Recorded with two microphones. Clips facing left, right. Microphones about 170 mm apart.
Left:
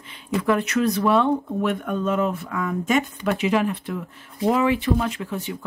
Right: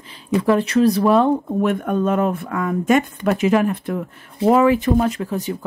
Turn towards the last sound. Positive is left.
turn(degrees=-40)  # may be behind; listen again after turning